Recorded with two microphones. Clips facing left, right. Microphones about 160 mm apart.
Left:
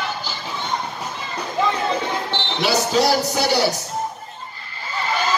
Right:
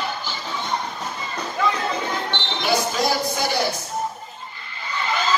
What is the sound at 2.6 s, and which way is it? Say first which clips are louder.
Speech: left 4 dB; 90° left.